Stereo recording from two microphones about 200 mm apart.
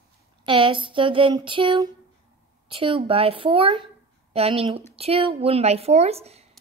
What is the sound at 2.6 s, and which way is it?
A woman's voice, 25° right (ahead or behind).